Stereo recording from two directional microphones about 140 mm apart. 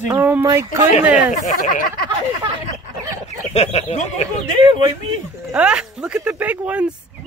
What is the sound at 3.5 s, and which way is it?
Speech, 50° left (ahead or behind).